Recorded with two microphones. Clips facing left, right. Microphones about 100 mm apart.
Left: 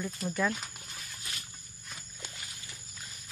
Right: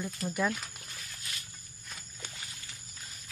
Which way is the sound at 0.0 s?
10° right (ahead or behind).